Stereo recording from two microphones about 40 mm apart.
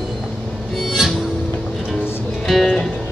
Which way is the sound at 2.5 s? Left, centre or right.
Centre.